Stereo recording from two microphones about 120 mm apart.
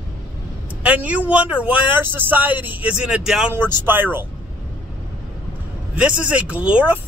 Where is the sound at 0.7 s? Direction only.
10° right (ahead or behind).